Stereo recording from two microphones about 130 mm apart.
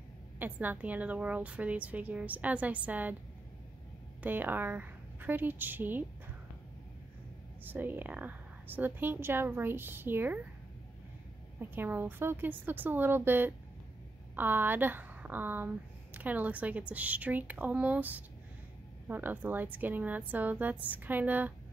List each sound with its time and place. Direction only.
0.4 s a woman's voice: 15° right (ahead or behind)
4.2 s a woman's voice: 15° right (ahead or behind)
7.6 s a woman's voice: 15° right (ahead or behind)
11.7 s a woman's voice: 15° right (ahead or behind)